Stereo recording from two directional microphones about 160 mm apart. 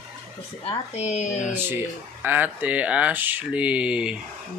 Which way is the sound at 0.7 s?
45° left (ahead or behind).